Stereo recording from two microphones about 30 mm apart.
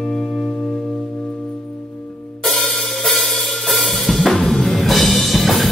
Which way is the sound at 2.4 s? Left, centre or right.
Centre.